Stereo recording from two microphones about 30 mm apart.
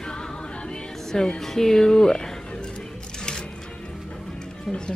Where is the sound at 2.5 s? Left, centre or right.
Left.